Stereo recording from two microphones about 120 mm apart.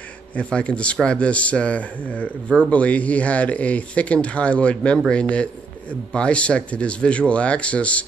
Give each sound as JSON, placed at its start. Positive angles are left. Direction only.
{"t": 0.3, "sound": "speech", "side_deg": 10}